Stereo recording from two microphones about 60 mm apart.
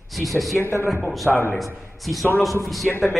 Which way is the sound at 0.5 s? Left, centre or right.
Left.